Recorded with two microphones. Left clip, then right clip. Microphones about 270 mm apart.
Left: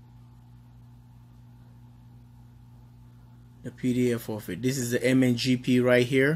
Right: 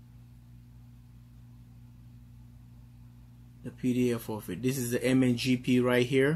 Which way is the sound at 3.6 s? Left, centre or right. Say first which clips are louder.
Left 3 dB; centre.